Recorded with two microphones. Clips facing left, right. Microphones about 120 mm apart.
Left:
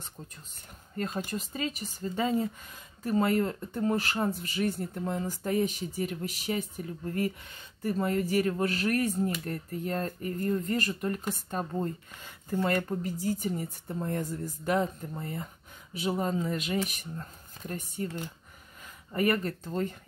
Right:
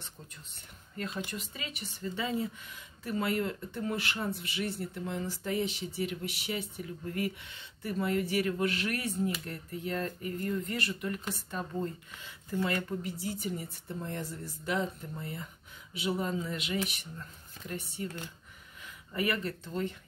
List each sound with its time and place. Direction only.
0.9 s speech: 40° left (ahead or behind)
19.1 s speech: 45° left (ahead or behind)